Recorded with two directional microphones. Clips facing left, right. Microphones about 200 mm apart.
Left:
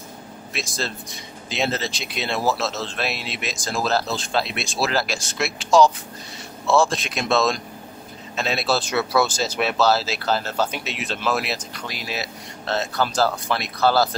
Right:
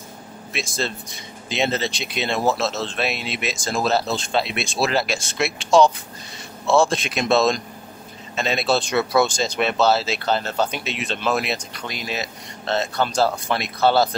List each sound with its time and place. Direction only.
0.5 s speech: centre (ahead or behind)